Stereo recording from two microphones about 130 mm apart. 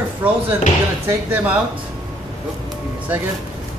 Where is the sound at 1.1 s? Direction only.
15° right (ahead or behind).